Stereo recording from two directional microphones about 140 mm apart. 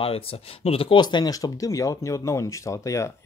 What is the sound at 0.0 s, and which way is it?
Speech, 45° left (ahead or behind).